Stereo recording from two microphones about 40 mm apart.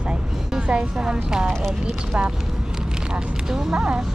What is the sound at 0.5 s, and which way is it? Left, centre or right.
Speech, right.